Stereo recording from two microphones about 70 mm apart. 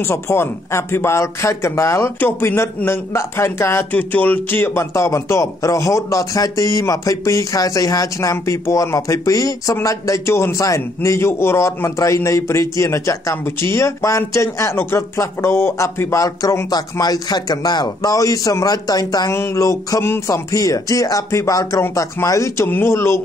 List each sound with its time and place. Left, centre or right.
0.0 s speech: left
2.1 s speech: left
3.9 s music: left
4.9 s a man's voice: left
10.6 s a man's voice: left
19.3 s a man's voice: left
20.5 s a man's voice: left
22.7 s speech: left